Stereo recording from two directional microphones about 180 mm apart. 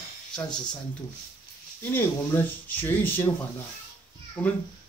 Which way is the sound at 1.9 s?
10° left (ahead or behind).